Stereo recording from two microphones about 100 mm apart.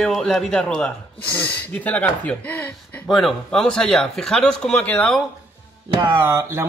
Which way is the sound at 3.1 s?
Centre (ahead or behind).